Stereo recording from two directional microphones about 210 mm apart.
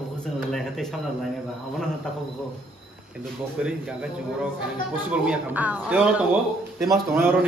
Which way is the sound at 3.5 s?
5° right (ahead or behind).